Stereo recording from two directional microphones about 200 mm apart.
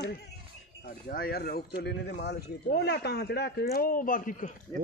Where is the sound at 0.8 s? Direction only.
50° left (ahead or behind).